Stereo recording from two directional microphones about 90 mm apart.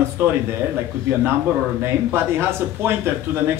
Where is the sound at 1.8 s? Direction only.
25° right (ahead or behind).